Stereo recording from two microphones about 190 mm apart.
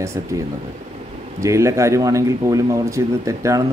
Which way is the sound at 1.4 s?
15° right (ahead or behind).